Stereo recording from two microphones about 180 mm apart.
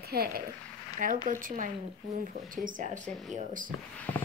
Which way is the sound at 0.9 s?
45° right (ahead or behind).